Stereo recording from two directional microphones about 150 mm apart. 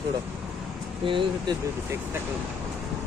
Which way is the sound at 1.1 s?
35° right (ahead or behind).